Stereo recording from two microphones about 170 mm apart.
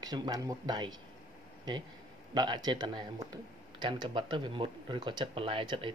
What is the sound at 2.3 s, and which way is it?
Speech, 25° right (ahead or behind).